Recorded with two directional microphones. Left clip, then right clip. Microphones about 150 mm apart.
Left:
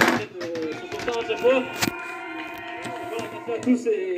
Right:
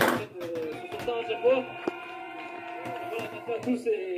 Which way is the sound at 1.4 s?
45° left (ahead or behind).